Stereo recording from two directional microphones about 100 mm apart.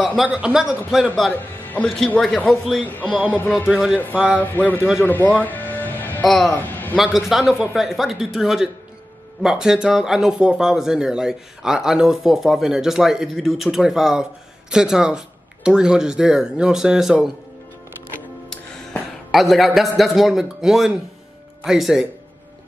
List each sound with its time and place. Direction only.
0.2 s speech: 10° right (ahead or behind)
1.3 s a man's voice: 20° left (ahead or behind)
2.2 s speech: 5° left (ahead or behind)
3.0 s speech: 10° right (ahead or behind)
3.3 s speech: 20° left (ahead or behind)
3.6 s speech: 10° right (ahead or behind)
4.4 s speech: 15° left (ahead or behind)
5.0 s music: 15° left (ahead or behind)
6.2 s speech: centre (ahead or behind)
6.5 s a sound: 20° left (ahead or behind)
7.0 s speech: 5° right (ahead or behind)
19.3 s speech: centre (ahead or behind)